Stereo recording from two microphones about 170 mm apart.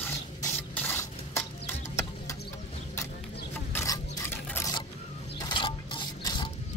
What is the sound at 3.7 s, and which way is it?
Scrape, 15° left (ahead or behind).